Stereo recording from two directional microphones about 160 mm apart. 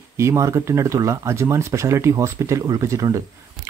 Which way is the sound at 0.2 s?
20° right (ahead or behind).